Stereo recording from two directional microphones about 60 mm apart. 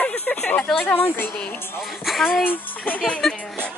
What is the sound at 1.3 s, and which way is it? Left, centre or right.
Speech, left.